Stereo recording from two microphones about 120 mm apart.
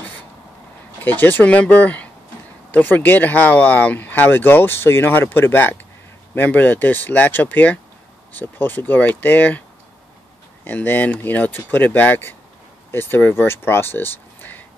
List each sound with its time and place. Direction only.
1.0 s speech: 15° left (ahead or behind)
10.6 s speech: 15° left (ahead or behind)